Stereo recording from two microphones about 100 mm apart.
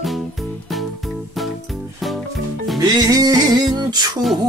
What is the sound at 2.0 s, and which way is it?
Music, centre (ahead or behind).